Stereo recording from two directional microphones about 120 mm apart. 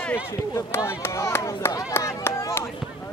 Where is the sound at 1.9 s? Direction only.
20° left (ahead or behind).